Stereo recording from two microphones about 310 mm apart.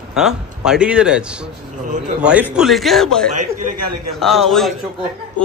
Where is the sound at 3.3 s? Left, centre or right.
Right.